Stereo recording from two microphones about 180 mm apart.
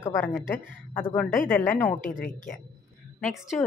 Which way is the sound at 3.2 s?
Centre (ahead or behind).